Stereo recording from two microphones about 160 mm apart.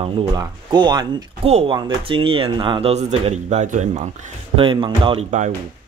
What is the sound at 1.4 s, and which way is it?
Speech, 35° right (ahead or behind).